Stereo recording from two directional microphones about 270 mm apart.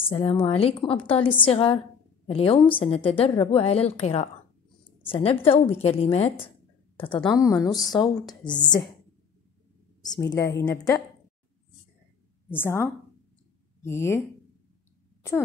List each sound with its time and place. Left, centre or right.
0.0 s a woman's voice: centre
7.2 s a woman's voice: centre
10.0 s a woman's voice: centre
12.4 s a woman's voice: centre